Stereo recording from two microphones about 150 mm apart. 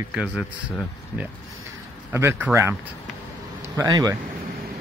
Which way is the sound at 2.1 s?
15° right (ahead or behind).